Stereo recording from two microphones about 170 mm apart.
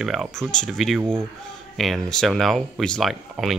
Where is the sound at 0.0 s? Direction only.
Centre (ahead or behind).